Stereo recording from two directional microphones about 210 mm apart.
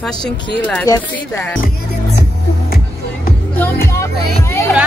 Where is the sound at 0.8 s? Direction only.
15° left (ahead or behind).